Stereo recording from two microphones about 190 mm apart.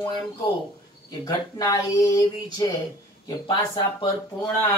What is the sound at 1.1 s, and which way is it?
Speech, 20° left (ahead or behind).